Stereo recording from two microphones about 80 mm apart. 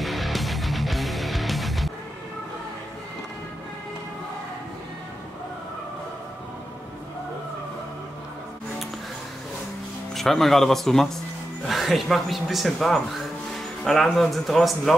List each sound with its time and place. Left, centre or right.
0.0 s music: centre
10.1 s speech: centre